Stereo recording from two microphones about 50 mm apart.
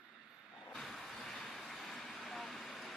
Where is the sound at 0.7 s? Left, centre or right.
Centre.